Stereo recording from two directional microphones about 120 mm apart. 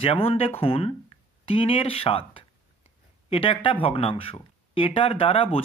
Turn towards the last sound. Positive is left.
turn(degrees=50)  # may be behind; listen again after turning